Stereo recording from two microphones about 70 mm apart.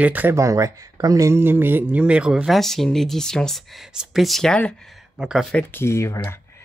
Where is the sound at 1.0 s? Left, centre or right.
Right.